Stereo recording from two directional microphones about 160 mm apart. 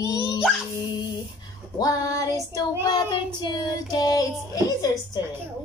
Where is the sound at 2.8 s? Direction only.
25° left (ahead or behind).